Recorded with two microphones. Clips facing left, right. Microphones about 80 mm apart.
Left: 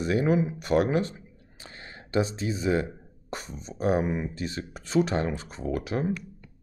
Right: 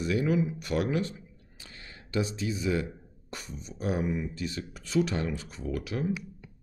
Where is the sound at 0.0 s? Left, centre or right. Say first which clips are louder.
Left 3 dB; left.